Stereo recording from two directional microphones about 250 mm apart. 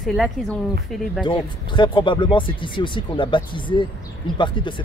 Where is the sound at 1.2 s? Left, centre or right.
Centre.